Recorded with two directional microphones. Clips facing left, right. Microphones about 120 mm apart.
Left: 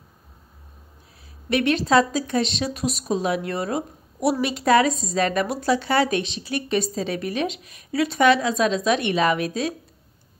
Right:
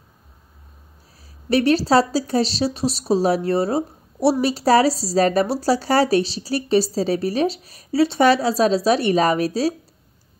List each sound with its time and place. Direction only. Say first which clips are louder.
1.5 s speech: right 3 dB; 35° right (ahead or behind)